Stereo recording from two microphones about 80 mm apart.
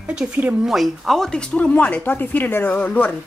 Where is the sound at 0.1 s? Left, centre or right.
Centre.